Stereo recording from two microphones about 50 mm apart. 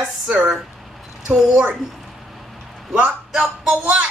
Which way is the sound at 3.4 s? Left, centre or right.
Centre.